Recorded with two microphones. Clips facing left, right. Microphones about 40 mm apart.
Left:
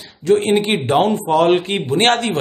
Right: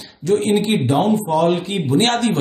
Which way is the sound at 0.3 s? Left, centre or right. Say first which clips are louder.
Left 2 dB; left.